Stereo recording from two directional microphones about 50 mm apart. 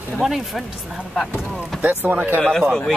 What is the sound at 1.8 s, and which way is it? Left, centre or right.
Speech, right.